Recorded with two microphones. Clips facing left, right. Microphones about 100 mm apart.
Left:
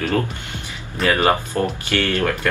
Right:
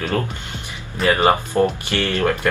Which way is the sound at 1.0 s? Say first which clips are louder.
Right 1 dB; 20° right (ahead or behind).